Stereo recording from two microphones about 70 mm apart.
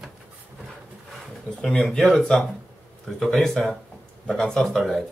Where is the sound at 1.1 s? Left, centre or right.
Centre.